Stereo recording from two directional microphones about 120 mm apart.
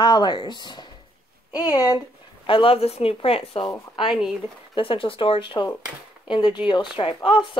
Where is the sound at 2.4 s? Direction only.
45° left (ahead or behind).